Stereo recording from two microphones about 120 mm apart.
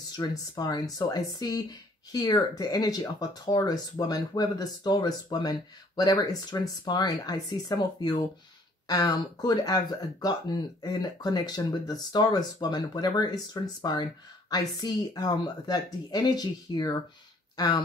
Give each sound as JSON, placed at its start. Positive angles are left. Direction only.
{"t": 0.1, "sound": "speech", "side_deg": 35}